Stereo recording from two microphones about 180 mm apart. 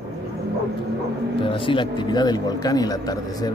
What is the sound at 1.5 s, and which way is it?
Speech, 30° left (ahead or behind).